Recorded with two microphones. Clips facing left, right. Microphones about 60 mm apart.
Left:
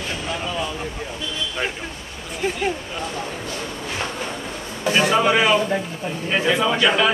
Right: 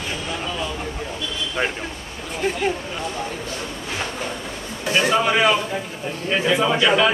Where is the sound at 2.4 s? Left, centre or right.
Centre.